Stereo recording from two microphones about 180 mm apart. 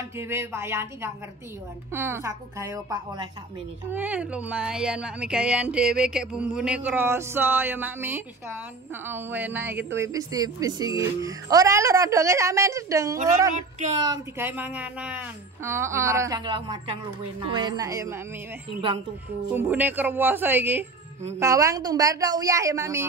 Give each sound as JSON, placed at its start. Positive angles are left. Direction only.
{"t": 0.2, "sound": "speech", "side_deg": -15}
{"t": 3.9, "sound": "speech", "side_deg": -10}
{"t": 13.6, "sound": "speech", "side_deg": -40}
{"t": 14.0, "sound": "speech", "side_deg": -20}
{"t": 14.5, "sound": "speech", "side_deg": -10}
{"t": 19.5, "sound": "speech", "side_deg": -10}